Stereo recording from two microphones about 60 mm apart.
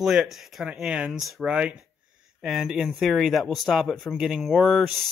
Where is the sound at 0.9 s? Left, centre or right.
Centre.